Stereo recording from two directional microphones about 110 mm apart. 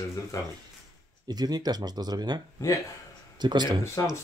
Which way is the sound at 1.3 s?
40° right (ahead or behind).